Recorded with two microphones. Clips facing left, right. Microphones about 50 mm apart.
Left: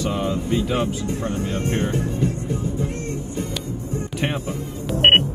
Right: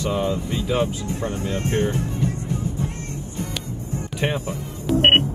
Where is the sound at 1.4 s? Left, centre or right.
Left.